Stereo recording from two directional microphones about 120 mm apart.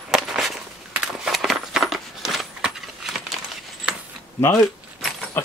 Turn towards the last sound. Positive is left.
turn(degrees=0)  # may be behind; listen again after turning